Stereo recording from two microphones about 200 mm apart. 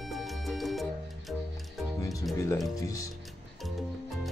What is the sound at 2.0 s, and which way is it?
Music, 15° left (ahead or behind).